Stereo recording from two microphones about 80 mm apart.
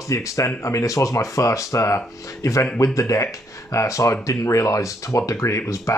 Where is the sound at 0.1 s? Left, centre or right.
Left.